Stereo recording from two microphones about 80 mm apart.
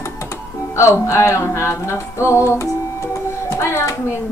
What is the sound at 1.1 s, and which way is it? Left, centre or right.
Music, left.